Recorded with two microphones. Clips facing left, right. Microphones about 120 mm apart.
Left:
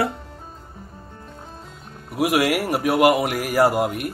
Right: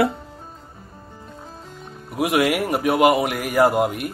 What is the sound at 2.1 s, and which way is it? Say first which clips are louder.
A man's voice: even; centre (ahead or behind).